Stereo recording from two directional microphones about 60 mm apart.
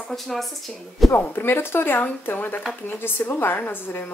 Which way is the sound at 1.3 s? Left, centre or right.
Left.